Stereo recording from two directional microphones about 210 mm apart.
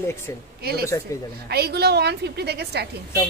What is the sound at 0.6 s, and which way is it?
A woman's voice, 50° right (ahead or behind).